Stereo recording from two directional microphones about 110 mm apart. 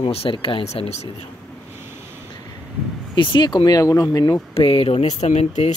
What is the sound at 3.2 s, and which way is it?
Speech, 45° left (ahead or behind).